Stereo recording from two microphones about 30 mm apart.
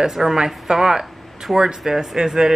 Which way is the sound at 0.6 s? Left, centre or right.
Right.